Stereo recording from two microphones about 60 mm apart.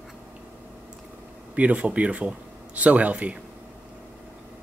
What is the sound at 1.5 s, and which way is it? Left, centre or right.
Speech, right.